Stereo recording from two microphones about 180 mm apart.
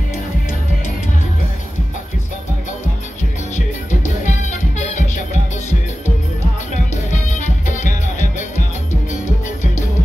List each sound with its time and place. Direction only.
4.3 s music: 40° left (ahead or behind)
7.1 s music: 45° left (ahead or behind)